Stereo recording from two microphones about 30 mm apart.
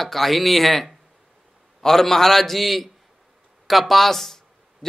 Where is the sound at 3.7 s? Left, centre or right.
Centre.